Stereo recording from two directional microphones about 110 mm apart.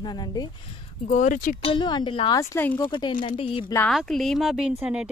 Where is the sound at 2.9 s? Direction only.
45° left (ahead or behind).